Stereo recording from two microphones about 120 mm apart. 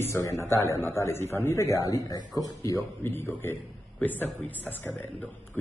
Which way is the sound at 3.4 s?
15° left (ahead or behind).